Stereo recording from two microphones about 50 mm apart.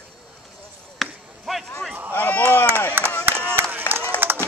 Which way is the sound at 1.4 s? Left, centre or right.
Centre.